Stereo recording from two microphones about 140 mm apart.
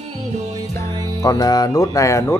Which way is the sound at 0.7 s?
20° left (ahead or behind).